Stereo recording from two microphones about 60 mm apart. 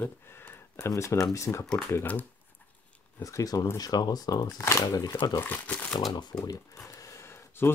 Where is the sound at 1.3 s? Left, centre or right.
Left.